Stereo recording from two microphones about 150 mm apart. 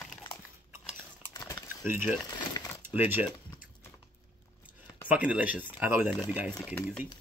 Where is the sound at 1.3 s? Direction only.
25° left (ahead or behind).